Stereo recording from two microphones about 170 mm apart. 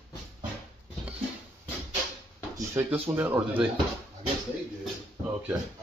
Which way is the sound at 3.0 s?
10° right (ahead or behind).